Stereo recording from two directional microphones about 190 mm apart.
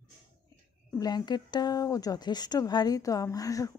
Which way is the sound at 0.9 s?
20° left (ahead or behind).